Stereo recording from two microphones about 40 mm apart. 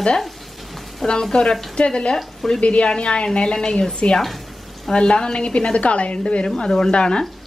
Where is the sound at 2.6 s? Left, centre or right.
Left.